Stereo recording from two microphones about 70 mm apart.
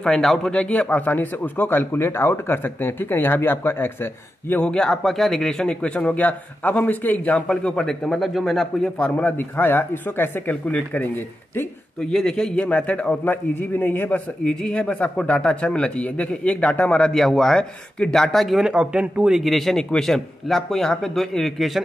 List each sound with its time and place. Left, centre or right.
0.0 s speech: centre; by 4.6 s left
4.6 s a man's voice: centre
9.2 s speech: left
12.0 s speech: centre; by 14.2 s left
14.4 s a man's voice: centre
18.6 s a man's voice: centre